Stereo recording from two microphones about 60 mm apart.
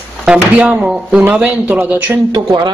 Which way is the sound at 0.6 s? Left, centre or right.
Centre.